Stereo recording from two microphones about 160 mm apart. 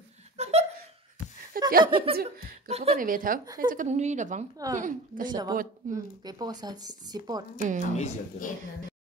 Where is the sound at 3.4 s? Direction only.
25° right (ahead or behind).